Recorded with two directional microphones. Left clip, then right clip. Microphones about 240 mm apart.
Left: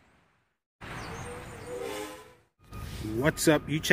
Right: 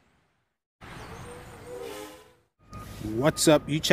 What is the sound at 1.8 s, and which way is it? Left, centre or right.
Train, centre.